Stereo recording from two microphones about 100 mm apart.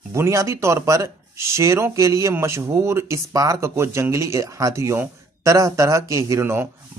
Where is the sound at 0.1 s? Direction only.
30° right (ahead or behind).